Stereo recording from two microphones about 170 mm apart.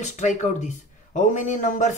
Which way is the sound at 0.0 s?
45° left (ahead or behind).